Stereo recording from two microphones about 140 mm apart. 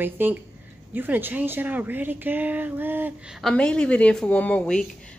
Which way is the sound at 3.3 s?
5° left (ahead or behind).